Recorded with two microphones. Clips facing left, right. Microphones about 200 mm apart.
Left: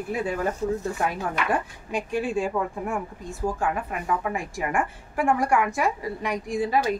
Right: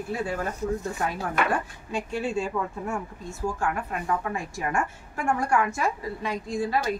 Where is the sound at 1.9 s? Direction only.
15° left (ahead or behind).